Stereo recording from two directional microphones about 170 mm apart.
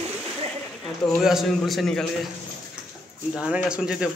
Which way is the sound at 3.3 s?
5° right (ahead or behind).